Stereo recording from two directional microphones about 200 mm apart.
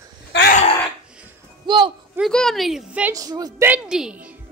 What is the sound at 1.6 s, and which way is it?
Speech, 25° right (ahead or behind).